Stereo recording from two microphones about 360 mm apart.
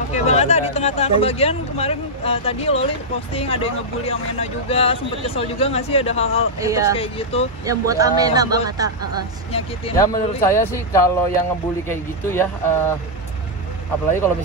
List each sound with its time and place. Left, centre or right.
0.1 s speech: centre
6.6 s speech: centre
7.0 s speech: centre
7.6 s speech: centre
9.5 s speech: centre